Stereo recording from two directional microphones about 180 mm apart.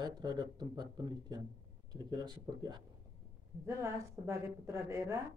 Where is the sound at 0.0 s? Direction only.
25° right (ahead or behind).